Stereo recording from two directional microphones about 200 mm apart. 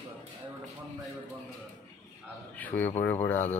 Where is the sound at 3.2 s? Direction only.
10° left (ahead or behind).